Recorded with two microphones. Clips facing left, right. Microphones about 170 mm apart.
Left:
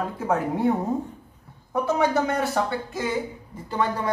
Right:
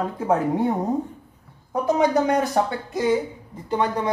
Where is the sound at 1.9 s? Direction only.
15° right (ahead or behind).